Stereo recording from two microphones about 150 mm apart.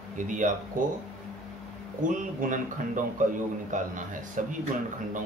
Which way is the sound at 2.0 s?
60° right (ahead or behind).